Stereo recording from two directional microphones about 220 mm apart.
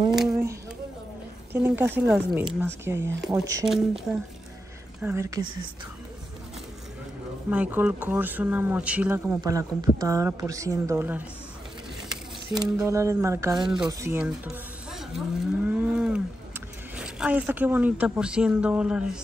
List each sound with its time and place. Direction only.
0.1 s a sound: centre (ahead or behind)
1.5 s speech: 10° right (ahead or behind)
3.6 s speech: centre (ahead or behind)
5.0 s speech: 15° right (ahead or behind)
7.4 s speech: 5° right (ahead or behind)
12.5 s speech: 15° right (ahead or behind)
13.8 s cattle: 10° right (ahead or behind)
16.9 s speech: 5° right (ahead or behind)